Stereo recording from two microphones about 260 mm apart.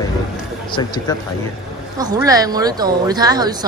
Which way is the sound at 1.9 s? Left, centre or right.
Centre.